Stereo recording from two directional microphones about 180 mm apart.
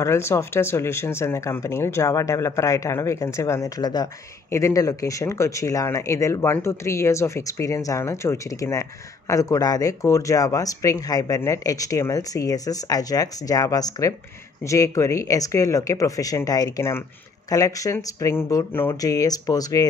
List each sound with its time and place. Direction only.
0.0 s speech: 15° left (ahead or behind)